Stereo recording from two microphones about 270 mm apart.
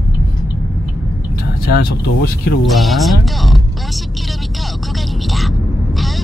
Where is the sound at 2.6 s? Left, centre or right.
Centre.